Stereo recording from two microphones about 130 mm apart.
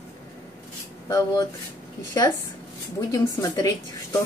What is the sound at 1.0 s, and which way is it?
Speech, 25° left (ahead or behind).